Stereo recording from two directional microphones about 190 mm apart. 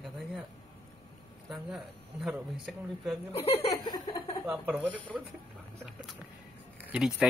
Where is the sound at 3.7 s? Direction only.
20° left (ahead or behind).